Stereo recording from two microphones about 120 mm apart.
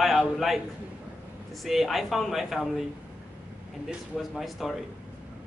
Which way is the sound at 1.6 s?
Centre (ahead or behind).